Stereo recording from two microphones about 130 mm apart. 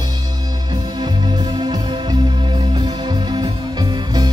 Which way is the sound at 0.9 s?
35° right (ahead or behind).